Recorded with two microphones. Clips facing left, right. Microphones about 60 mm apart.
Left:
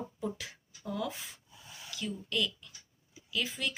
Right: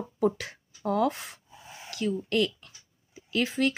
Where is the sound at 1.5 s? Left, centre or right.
Right.